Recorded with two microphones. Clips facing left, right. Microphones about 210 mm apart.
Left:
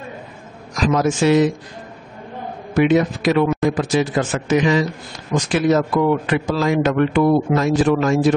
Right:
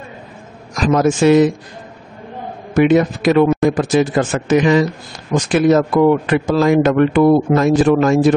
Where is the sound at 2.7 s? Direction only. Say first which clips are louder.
Right 3 dB; 50° right (ahead or behind).